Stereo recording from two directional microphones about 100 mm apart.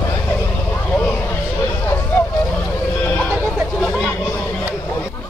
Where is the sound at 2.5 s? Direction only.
20° left (ahead or behind).